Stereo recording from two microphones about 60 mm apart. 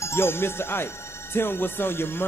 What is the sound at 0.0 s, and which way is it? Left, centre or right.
Speech, left.